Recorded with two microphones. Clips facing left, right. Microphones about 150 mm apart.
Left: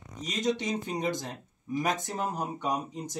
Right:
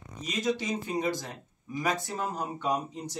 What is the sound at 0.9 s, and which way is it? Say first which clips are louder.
Speech: right 1 dB; 20° left (ahead or behind).